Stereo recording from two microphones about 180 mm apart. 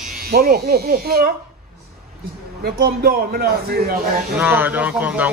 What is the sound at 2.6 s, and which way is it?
A man's voice, 60° right (ahead or behind).